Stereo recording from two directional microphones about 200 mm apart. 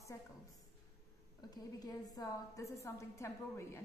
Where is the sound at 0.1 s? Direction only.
15° left (ahead or behind).